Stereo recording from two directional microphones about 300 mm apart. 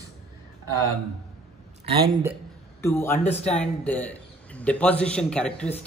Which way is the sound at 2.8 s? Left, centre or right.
Centre.